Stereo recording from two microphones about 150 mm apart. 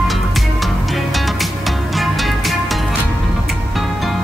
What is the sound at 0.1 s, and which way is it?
Music, centre (ahead or behind).